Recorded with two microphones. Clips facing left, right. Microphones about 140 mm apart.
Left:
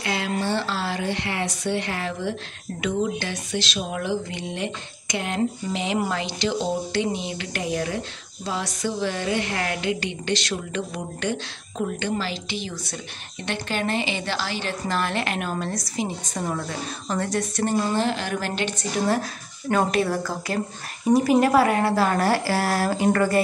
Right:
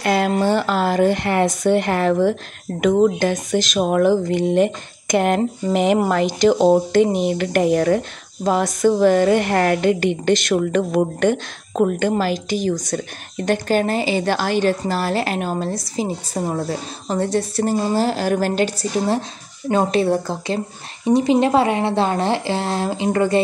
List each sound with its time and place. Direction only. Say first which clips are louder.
0.0 s a woman's voice: right 9 dB; 50° right (ahead or behind)
19.7 s speech: right 5 dB; 30° right (ahead or behind)